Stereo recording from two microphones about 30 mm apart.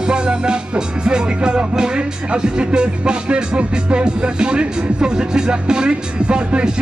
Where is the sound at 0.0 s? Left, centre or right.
Right.